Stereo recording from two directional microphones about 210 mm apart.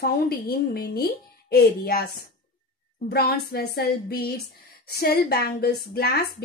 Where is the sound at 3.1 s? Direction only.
50° left (ahead or behind).